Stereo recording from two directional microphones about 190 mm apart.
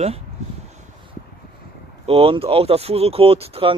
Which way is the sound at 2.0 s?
30° right (ahead or behind).